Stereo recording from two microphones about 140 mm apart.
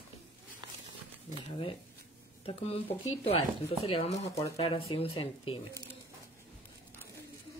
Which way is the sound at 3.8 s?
45° left (ahead or behind).